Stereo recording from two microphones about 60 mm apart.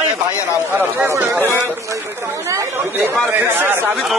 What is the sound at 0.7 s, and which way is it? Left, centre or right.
Speech, right.